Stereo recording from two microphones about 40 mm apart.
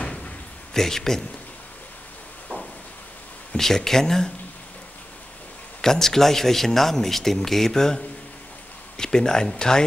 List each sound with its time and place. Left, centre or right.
0.0 s rain: left
0.7 s speech: centre
3.5 s speech: centre
5.8 s speech: centre